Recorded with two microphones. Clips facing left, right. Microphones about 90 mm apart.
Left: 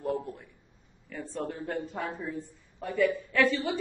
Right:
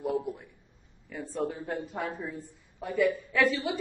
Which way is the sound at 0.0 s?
10° right (ahead or behind).